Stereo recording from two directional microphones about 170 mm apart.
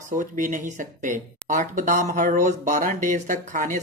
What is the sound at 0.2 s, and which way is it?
Speech, 50° right (ahead or behind).